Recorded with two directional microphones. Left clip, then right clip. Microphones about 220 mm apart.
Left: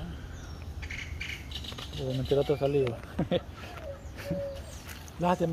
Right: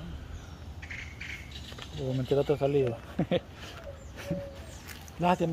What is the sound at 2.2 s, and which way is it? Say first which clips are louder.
Speech: even; 15° right (ahead or behind).